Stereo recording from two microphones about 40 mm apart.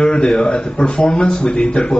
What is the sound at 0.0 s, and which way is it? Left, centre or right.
Speech, left.